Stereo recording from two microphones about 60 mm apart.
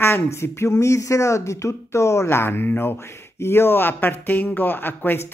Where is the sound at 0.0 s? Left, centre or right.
Left.